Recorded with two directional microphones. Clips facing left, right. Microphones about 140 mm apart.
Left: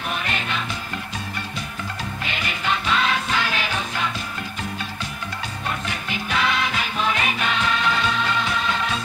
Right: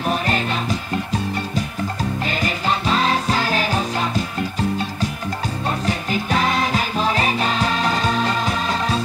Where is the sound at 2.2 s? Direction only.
35° right (ahead or behind).